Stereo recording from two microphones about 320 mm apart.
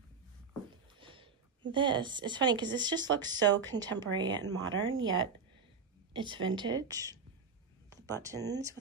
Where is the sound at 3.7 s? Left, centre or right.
Right.